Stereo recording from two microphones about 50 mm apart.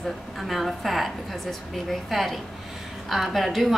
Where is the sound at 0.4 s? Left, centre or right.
Centre.